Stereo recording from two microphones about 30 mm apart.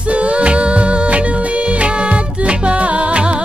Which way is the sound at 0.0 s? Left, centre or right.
Right.